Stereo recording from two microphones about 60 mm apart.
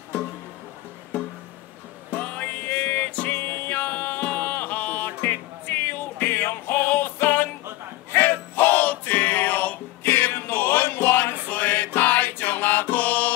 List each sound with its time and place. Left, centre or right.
2.0 s music: left